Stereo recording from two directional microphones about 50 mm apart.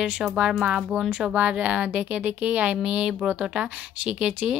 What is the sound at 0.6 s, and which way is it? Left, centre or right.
Speech, right.